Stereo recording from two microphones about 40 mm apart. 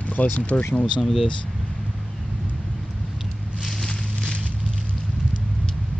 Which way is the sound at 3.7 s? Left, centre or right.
Centre.